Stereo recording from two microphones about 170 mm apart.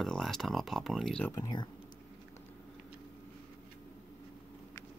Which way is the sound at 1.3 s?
25° left (ahead or behind).